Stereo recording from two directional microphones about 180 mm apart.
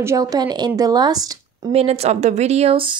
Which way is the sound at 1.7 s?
35° right (ahead or behind).